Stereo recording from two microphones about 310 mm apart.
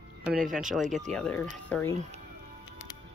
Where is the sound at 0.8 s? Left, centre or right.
Right.